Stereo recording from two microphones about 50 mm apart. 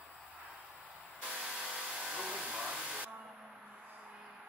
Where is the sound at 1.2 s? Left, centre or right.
Centre.